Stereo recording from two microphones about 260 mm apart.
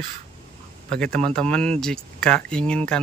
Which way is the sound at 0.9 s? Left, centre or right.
Centre.